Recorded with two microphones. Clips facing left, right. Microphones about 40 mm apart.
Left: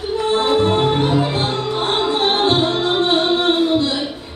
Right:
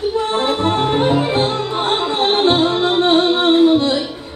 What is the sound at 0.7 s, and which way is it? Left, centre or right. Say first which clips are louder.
Music: right 1 dB; centre.